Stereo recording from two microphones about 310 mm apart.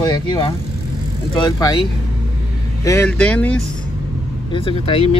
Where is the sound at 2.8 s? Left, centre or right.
Centre.